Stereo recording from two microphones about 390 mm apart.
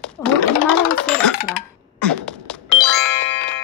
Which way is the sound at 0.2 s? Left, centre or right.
Centre.